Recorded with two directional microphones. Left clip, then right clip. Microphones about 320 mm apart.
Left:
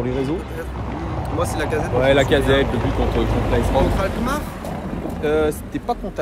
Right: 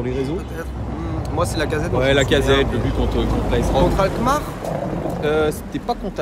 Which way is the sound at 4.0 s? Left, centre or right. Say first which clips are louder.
Right 4 dB; centre.